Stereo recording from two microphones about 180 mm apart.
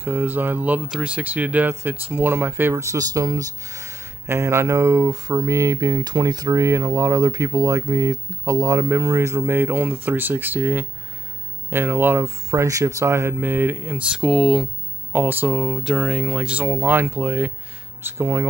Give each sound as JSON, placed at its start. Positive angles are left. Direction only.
{"t": 0.0, "sound": "speech", "side_deg": -10}